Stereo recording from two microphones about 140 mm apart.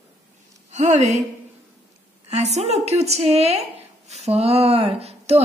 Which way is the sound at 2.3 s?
50° right (ahead or behind).